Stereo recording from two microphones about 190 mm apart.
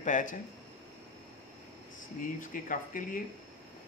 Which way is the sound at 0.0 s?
45° left (ahead or behind).